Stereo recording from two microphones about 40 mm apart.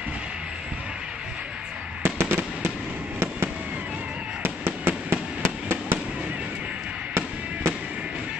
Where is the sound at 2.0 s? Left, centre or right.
Right.